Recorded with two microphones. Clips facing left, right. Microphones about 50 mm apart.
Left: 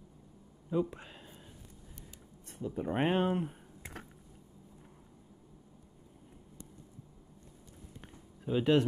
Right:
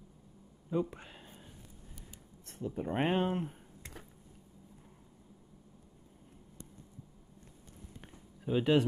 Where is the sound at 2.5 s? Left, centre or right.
Centre.